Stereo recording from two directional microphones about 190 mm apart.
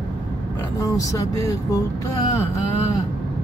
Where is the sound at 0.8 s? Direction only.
20° left (ahead or behind).